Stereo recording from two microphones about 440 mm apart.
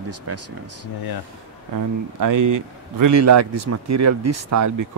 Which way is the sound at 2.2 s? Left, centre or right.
Right.